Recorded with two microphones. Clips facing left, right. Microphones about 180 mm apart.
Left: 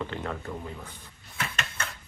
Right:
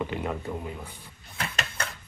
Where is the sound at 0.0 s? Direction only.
10° right (ahead or behind).